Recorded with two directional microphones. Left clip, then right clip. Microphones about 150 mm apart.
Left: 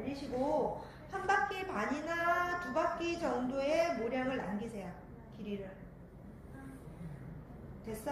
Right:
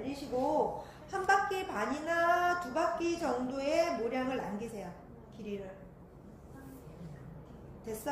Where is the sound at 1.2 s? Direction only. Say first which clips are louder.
Right 3 dB; 35° right (ahead or behind).